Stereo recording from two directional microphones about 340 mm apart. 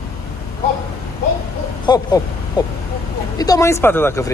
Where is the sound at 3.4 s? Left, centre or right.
Centre.